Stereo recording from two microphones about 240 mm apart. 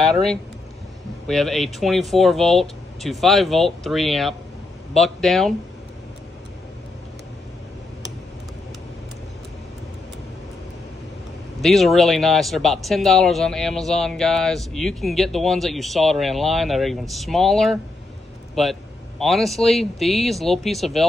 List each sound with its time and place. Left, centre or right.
0.0 s speech: centre
11.6 s speech: centre